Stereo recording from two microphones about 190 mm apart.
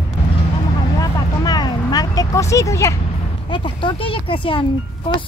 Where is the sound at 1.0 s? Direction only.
20° left (ahead or behind).